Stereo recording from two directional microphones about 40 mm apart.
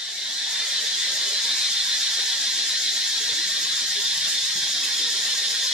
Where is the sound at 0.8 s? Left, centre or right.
Centre.